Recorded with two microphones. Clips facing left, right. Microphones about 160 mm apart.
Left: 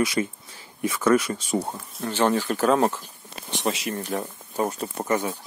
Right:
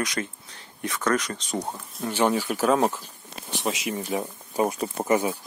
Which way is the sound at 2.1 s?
10° right (ahead or behind).